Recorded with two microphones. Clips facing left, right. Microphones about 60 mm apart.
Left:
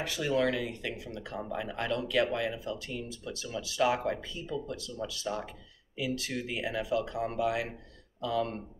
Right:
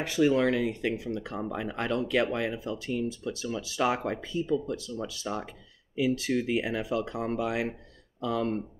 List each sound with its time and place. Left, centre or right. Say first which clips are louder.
0.0 s speech: right 5 dB; right